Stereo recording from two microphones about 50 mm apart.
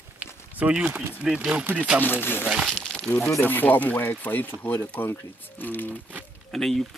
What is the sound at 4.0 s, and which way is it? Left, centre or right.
Speech, left.